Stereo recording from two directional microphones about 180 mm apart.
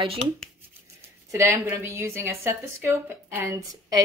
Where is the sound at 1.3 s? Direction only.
10° right (ahead or behind).